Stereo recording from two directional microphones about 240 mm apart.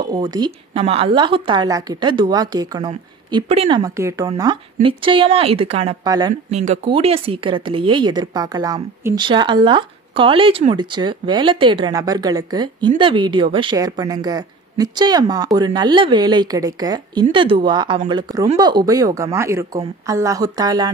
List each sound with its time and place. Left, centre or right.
0.0 s speech: centre
6.5 s speech: right